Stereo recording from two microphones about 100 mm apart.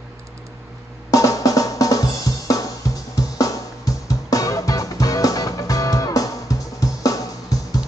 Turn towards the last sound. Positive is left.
turn(degrees=35)  # may be behind; listen again after turning